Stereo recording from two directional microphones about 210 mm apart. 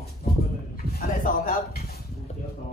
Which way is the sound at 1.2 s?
40° left (ahead or behind).